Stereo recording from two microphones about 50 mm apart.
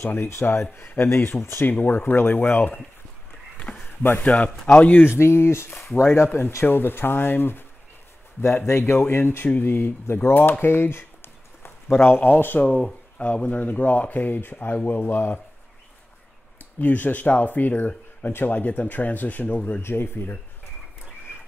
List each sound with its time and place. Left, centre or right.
0.0 s speech: left
1.6 s speech: left
3.7 s a sound: centre
4.2 s speech: left
5.1 s speech: left
8.4 s speech: left
10.6 s speech: left
13.2 s speech: left
15.0 s speech: left
16.5 s speech: left
19.8 s speech: left